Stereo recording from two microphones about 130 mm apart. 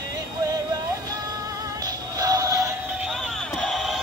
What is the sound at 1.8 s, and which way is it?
Synthetic singing, 30° right (ahead or behind).